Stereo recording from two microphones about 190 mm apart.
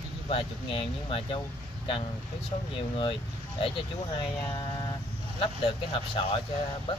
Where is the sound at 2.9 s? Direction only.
30° left (ahead or behind).